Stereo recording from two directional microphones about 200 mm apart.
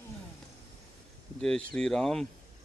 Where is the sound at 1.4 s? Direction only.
5° left (ahead or behind).